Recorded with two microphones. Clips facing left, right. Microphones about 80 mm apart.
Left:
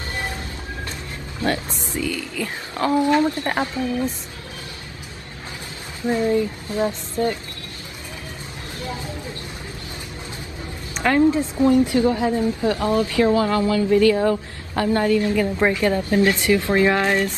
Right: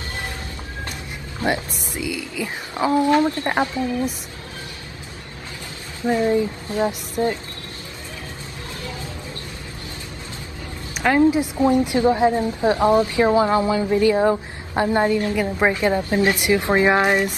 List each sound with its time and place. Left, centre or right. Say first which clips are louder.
1.4 s speech: right 1 dB; centre
3.0 s a woman's voice: right 1 dB; right
6.0 s a woman's voice: right 1 dB; right
11.1 s a woman's voice: even; centre